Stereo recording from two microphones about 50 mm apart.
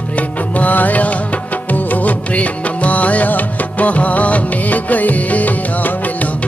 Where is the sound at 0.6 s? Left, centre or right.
Left.